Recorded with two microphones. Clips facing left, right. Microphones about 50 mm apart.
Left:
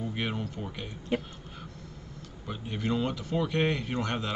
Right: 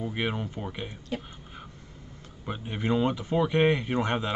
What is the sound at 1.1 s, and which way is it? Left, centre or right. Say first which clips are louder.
Speech: left 5 dB; left.